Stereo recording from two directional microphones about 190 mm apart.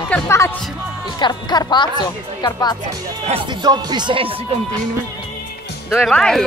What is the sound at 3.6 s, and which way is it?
Speech, 20° right (ahead or behind).